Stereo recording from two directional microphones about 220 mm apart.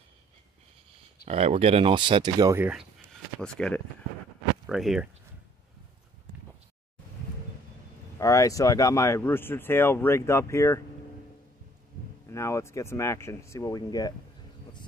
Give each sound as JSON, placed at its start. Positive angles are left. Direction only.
{"t": 1.2, "sound": "speech", "side_deg": -30}
{"t": 8.2, "sound": "speech", "side_deg": 15}
{"t": 12.3, "sound": "speech", "side_deg": 15}